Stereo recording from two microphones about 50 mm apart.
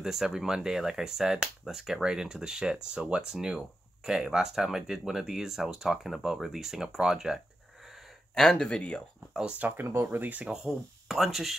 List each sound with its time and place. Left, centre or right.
0.0 s speech: centre
8.5 s speech: left
9.6 s speech: right
9.8 s speech: right
10.5 s speech: centre